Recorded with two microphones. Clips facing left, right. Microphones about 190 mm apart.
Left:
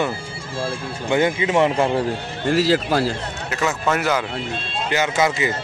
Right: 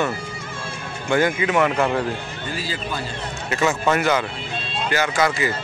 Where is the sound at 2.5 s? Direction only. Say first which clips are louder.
Left 12 dB; 80° left.